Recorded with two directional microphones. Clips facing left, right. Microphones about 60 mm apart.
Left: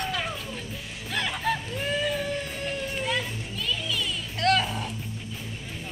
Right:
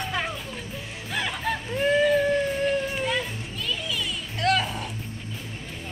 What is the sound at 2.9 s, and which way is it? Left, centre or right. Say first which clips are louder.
Music: right 2 dB; centre.